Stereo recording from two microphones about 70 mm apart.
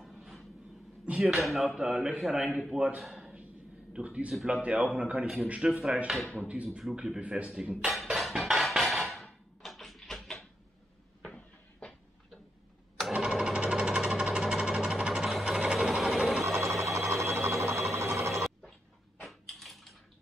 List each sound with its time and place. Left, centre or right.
0.0 s vehicle: centre
1.2 s a man's voice: centre
3.9 s speech: centre
6.8 s speech: centre
7.2 s speech: centre
7.8 s a sound: centre
11.2 s cupboard open or close: centre
13.0 s sewing machine: centre
16.5 s sewing machine: right
17.9 s a sound: right
18.3 s a sound: centre
19.2 s bathtub: centre